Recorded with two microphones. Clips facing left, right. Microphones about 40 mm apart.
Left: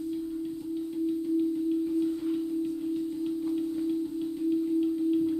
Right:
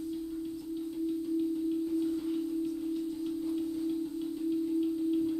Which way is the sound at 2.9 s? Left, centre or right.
Left.